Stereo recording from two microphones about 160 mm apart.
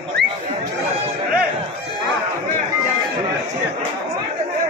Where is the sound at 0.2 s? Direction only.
90° right.